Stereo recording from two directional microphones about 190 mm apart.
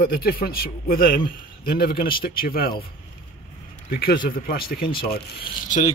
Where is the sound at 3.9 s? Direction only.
50° left (ahead or behind).